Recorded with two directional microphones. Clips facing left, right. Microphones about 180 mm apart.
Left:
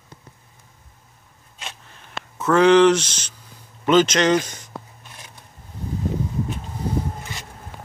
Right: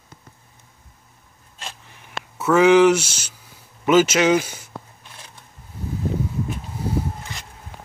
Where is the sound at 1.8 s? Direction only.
15° right (ahead or behind).